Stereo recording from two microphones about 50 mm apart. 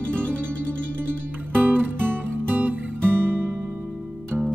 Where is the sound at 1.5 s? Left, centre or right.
Right.